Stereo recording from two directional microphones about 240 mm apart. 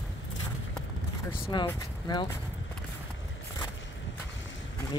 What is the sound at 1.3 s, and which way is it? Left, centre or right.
Speech, centre.